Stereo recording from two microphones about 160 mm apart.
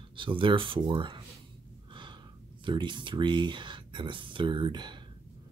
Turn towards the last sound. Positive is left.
turn(degrees=-30)  # may be behind; listen again after turning